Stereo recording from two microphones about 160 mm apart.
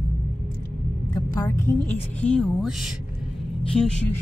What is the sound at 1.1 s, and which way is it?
Speech, 20° left (ahead or behind).